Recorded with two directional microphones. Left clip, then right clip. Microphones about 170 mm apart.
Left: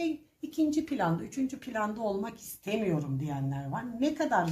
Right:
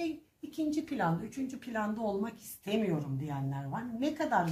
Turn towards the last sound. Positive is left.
turn(degrees=30)  # may be behind; listen again after turning